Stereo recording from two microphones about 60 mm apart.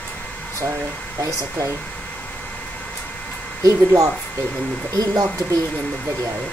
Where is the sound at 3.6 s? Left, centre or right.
Right.